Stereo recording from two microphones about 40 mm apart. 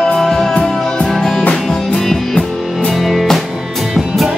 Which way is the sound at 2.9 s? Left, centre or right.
Centre.